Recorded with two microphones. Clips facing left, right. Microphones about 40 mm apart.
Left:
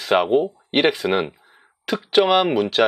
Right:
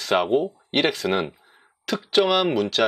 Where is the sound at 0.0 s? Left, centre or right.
Centre.